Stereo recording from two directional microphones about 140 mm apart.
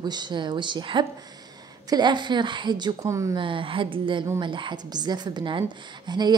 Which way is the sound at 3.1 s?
20° right (ahead or behind).